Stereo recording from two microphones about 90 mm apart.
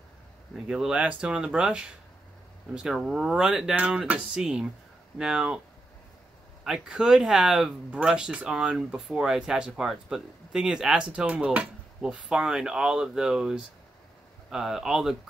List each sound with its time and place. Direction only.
0.7 s speech: 10° right (ahead or behind)
6.6 s speech: 5° right (ahead or behind)